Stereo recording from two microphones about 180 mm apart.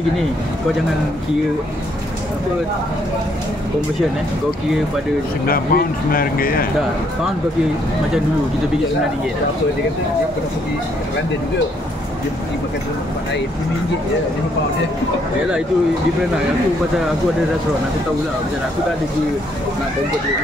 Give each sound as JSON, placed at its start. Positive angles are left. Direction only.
{"t": 5.5, "sound": "speech", "side_deg": 55}